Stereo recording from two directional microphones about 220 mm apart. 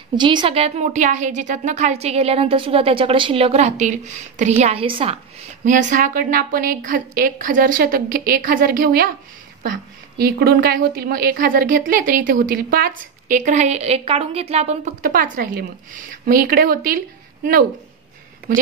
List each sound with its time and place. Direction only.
0.1 s a woman's voice: 20° right (ahead or behind)
5.7 s a woman's voice: 35° right (ahead or behind)